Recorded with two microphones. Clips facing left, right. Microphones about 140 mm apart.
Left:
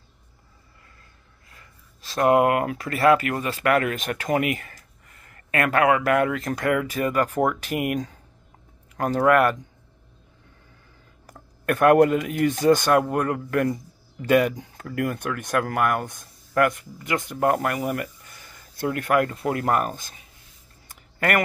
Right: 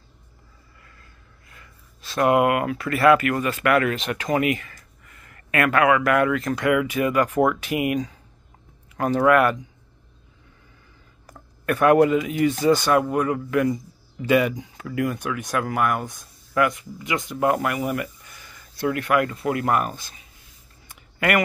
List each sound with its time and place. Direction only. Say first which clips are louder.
1.5 s a man's voice: right 1 dB; 35° left (ahead or behind)
11.6 s a man's voice: even; 50° left (ahead or behind)
20.9 s a sound: right 1 dB; 45° left (ahead or behind)